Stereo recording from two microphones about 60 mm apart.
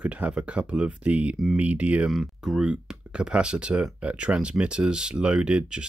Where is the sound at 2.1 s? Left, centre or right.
Centre.